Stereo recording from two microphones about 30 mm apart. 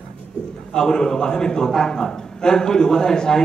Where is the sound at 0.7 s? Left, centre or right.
Left.